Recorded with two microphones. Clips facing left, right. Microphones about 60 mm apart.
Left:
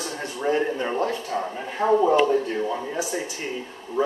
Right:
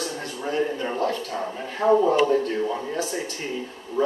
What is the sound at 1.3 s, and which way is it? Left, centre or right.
Speech, centre.